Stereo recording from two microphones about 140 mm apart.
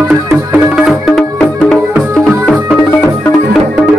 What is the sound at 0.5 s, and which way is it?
Music, 5° right (ahead or behind).